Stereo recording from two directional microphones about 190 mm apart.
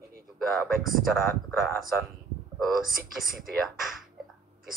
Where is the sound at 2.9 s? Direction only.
50° right (ahead or behind).